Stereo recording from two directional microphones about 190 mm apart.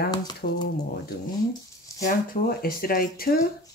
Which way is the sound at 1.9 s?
15° left (ahead or behind).